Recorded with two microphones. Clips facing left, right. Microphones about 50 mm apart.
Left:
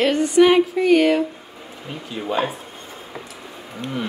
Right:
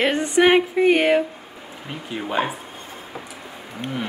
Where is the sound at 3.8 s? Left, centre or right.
Right.